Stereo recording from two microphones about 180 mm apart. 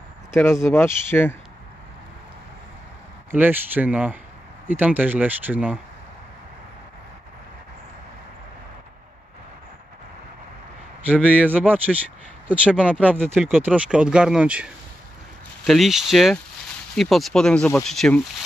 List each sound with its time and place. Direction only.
0.3 s speech: 15° left (ahead or behind)
3.3 s speech: 10° right (ahead or behind)
11.1 s speech: 10° right (ahead or behind)